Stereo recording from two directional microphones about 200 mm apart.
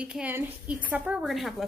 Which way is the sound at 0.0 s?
5° right (ahead or behind).